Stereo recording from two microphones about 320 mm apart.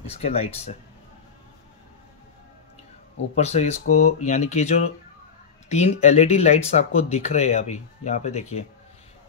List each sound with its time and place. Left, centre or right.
0.0 s speech: centre
3.3 s speech: centre